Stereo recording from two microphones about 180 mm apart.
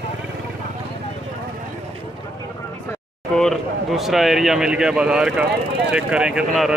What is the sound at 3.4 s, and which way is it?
A man's voice, centre (ahead or behind).